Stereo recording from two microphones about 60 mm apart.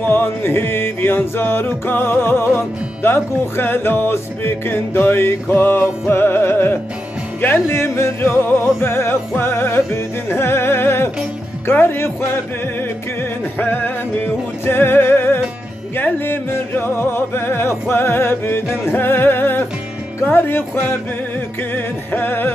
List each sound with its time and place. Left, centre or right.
0.0 s music: left
13.6 s music: left